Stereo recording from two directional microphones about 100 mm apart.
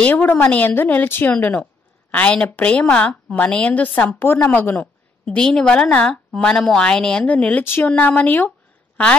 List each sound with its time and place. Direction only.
0.0 s a woman's voice: 20° left (ahead or behind)